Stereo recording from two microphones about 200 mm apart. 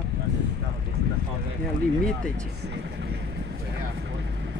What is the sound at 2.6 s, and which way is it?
Speech, 60° right (ahead or behind).